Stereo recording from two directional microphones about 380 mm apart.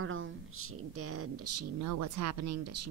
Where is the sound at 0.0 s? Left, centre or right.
Right.